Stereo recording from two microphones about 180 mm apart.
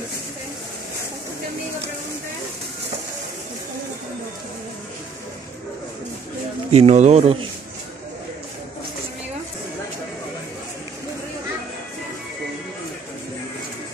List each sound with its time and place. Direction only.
6.7 s speech: 35° right (ahead or behind)